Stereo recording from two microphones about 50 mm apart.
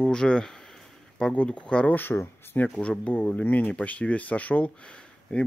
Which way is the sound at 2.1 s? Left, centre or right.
Left.